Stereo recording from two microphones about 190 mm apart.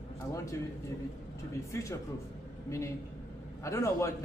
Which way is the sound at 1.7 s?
15° left (ahead or behind).